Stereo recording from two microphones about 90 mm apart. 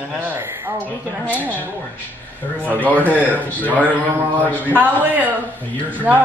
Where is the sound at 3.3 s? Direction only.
20° left (ahead or behind).